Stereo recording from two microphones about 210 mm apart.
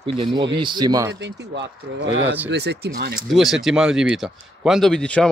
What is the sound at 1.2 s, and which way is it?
Speech, 60° right (ahead or behind).